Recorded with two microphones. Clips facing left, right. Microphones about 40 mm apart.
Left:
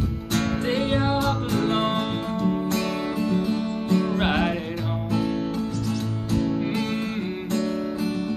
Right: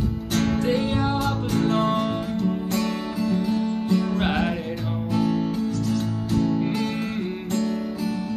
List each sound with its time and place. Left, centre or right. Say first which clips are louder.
0.7 s music: even; left
6.4 s music: right 2 dB; centre